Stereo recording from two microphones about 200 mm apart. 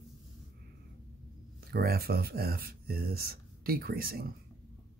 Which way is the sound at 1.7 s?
50° right (ahead or behind).